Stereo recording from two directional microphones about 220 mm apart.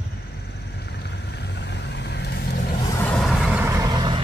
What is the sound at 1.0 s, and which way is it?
Vehicle, 50° left (ahead or behind).